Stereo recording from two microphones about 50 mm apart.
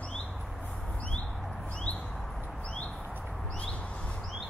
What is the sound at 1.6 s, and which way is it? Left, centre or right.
Bird, left.